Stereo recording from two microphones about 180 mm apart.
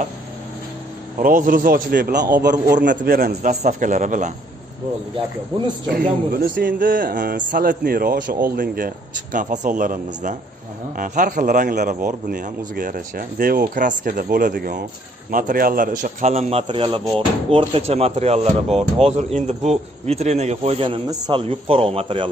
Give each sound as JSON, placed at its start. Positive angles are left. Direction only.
{"t": 1.2, "sound": "a man's voice", "side_deg": -50}
{"t": 3.6, "sound": "speech", "side_deg": -45}
{"t": 5.9, "sound": "speech", "side_deg": -55}